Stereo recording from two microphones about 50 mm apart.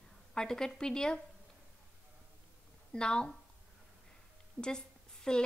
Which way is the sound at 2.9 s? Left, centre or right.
Centre.